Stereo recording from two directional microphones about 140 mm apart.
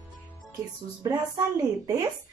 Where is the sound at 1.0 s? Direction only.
25° right (ahead or behind).